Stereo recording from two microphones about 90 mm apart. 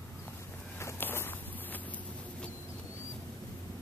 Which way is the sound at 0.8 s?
25° left (ahead or behind).